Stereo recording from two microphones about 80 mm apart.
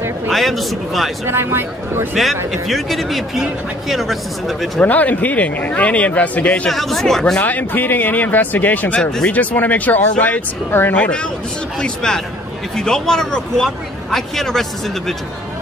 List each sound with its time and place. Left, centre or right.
0.3 s speech: centre
1.2 s speech: right
2.1 s speech: centre
4.7 s speech: centre
6.7 s speech: centre
7.3 s speech: left
9.3 s speech: left
11.0 s a man's voice: centre